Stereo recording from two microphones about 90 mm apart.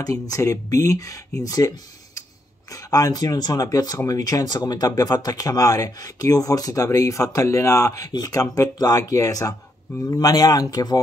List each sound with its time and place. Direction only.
0.0 s speech: 40° left (ahead or behind)
2.7 s speech: 40° left (ahead or behind)